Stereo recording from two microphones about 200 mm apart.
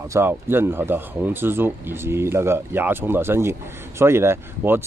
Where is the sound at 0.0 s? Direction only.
15° right (ahead or behind).